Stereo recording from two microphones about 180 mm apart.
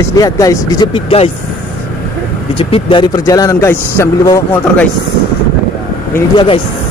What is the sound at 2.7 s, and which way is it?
A man's voice, 25° left (ahead or behind).